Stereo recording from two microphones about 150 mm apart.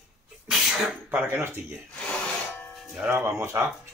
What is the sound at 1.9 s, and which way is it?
Filing, 5° left (ahead or behind).